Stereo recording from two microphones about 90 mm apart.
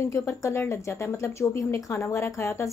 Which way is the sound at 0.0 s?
35° left (ahead or behind).